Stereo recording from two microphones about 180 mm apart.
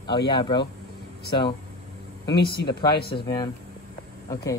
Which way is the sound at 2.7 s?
25° left (ahead or behind).